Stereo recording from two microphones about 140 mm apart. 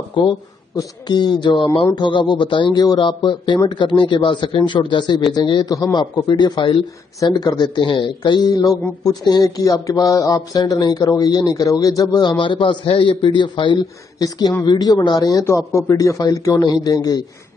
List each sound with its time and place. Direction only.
0.7 s speech: 30° left (ahead or behind)